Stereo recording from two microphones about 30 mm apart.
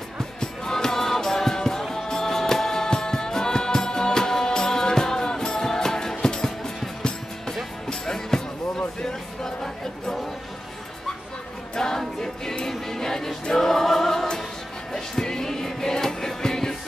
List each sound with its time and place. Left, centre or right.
0.4 s music: centre
11.7 s music: centre